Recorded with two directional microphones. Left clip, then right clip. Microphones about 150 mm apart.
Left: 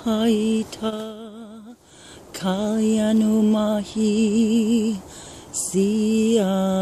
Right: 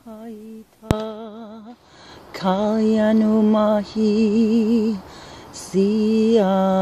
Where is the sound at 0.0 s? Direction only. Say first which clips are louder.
Left 16 dB; 40° left (ahead or behind).